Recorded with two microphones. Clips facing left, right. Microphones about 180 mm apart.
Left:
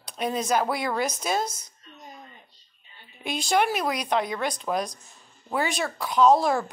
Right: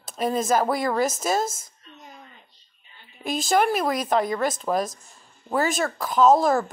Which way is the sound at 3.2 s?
45° right (ahead or behind).